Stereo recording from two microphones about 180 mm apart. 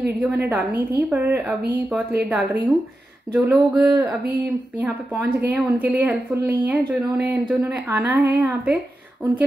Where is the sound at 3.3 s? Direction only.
10° right (ahead or behind).